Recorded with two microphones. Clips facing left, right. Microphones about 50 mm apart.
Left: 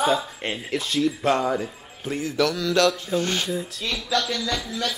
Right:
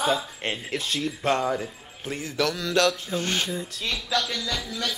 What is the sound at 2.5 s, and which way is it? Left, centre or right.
Speech, right.